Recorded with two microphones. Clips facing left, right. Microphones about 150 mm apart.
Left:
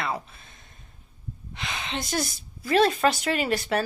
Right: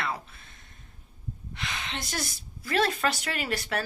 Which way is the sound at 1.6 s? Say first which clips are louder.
Left 4 dB; 20° left (ahead or behind).